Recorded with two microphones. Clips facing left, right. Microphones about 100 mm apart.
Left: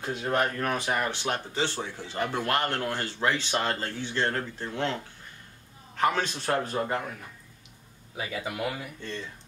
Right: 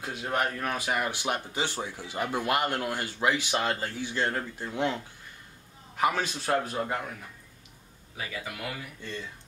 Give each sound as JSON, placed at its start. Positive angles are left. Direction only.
{"t": 0.0, "sound": "a man's voice", "side_deg": -5}
{"t": 8.2, "sound": "speech", "side_deg": 20}